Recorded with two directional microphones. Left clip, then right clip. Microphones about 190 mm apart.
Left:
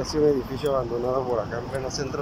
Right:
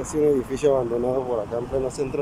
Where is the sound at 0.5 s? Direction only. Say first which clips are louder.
Right 5 dB; 25° right (ahead or behind).